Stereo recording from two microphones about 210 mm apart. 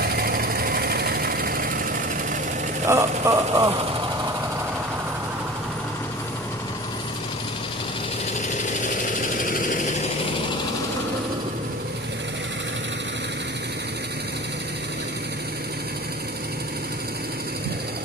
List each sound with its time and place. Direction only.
0.0 s engine: 45° right (ahead or behind)
2.9 s speech: 15° right (ahead or behind)
9.2 s vehicle: 40° left (ahead or behind)